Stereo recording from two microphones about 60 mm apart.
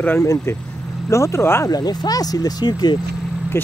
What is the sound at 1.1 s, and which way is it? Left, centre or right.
Speech, left.